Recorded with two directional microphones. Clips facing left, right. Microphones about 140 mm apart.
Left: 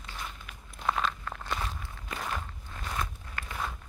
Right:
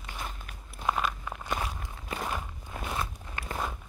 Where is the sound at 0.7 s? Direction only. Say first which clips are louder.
Right 1 dB; 10° right (ahead or behind).